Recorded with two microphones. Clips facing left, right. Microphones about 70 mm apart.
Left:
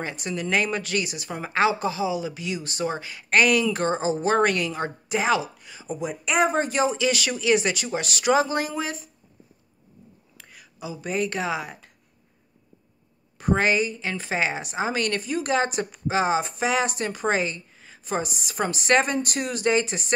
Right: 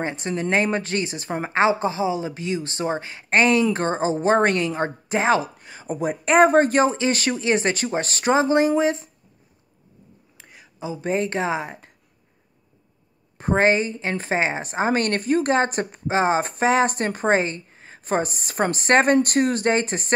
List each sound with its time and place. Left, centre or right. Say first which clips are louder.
0.0 s a woman's voice: right 4 dB; right
10.3 s speech: right 2 dB; right
13.4 s a woman's voice: right 3 dB; right